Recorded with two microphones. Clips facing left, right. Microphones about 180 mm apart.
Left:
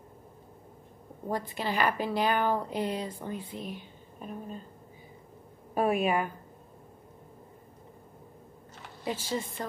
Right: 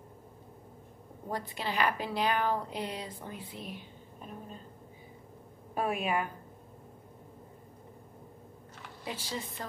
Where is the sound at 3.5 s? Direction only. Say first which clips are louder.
Left 5 dB; 40° left (ahead or behind).